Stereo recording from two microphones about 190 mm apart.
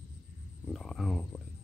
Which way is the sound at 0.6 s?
Centre (ahead or behind).